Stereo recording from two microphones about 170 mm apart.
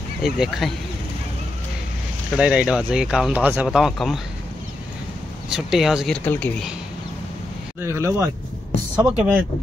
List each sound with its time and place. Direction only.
0.2 s speech: centre (ahead or behind)
2.3 s speech: 5° right (ahead or behind)
5.5 s speech: centre (ahead or behind)
7.8 s speech: 15° right (ahead or behind)